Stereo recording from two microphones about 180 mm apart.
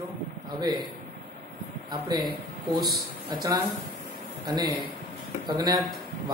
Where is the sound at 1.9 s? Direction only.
20° right (ahead or behind).